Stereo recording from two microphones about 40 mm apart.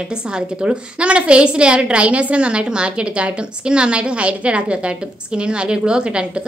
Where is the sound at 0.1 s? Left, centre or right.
Right.